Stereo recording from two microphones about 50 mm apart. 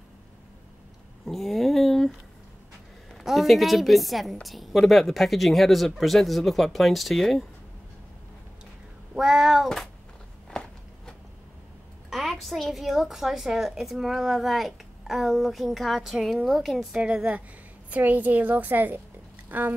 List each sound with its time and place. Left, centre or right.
1.2 s a sound: centre
3.1 s a woman's voice: centre
9.1 s child singing: centre
12.1 s a woman's voice: centre
16.4 s a woman's voice: centre
16.9 s child singing: centre
17.8 s a woman's voice: right